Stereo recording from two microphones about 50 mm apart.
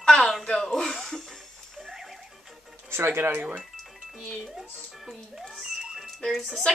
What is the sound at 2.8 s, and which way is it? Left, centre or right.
Speech, right.